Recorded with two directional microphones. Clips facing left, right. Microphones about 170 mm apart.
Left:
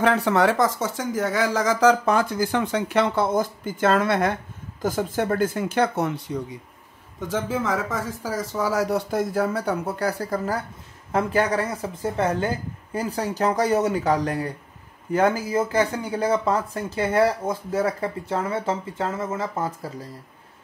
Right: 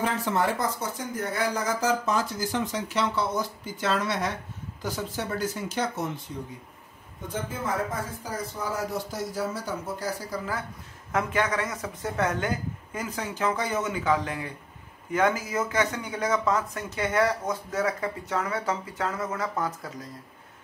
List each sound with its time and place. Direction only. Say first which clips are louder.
0.0 s speech: left 7 dB; 70° left (ahead or behind)
7.2 s speech: left 8 dB; 90° left; by 10.4 s 60° left (ahead or behind)
11.1 s speech: left 5 dB; 35° left (ahead or behind)